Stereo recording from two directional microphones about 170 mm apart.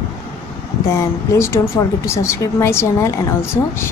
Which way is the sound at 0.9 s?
15° left (ahead or behind).